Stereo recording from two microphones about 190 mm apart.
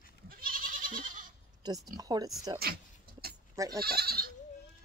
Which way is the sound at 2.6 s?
55° right (ahead or behind).